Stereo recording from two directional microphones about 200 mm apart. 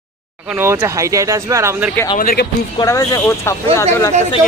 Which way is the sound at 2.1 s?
45° left (ahead or behind).